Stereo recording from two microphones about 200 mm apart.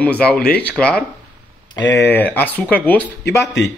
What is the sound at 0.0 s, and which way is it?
Speech, 5° left (ahead or behind).